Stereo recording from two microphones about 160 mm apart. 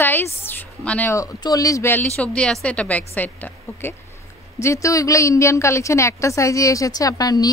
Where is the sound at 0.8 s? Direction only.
10° left (ahead or behind).